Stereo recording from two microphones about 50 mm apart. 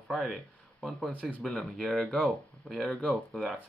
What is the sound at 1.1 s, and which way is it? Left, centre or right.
Speech, left.